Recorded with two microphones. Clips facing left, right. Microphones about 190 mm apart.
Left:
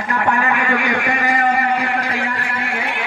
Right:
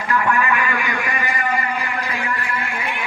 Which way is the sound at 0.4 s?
65° left (ahead or behind).